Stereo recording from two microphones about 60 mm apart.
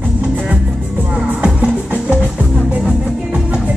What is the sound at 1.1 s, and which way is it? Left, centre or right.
Music, centre.